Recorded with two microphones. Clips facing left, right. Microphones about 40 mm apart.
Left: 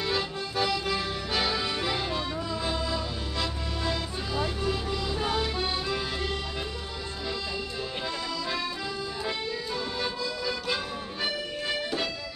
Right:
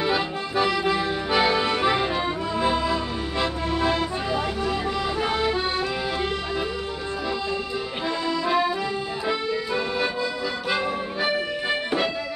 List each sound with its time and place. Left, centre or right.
0.0 s accordion: right
8.3 s accordion: right
10.7 s music: right